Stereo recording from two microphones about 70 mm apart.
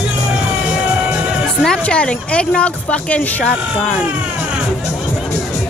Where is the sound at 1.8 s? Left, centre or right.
Centre.